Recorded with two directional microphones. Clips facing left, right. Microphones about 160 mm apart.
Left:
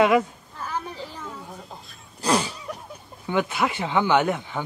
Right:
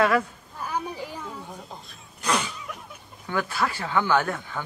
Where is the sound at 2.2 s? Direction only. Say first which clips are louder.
Left 4 dB; 30° left (ahead or behind).